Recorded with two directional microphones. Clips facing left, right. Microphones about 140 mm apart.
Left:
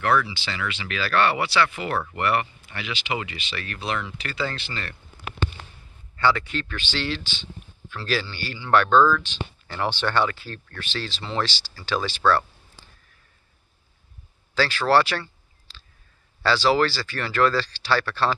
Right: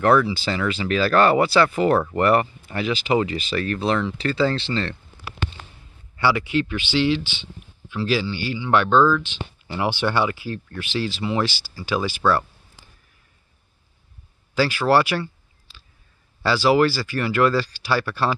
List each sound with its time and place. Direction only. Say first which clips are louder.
0.0 s speech: right 5 dB; 35° right (ahead or behind)
6.1 s speech: right 2 dB; 15° right (ahead or behind)
14.5 s speech: right 2 dB; 10° right (ahead or behind)
16.4 s speech: right 3 dB; 10° right (ahead or behind)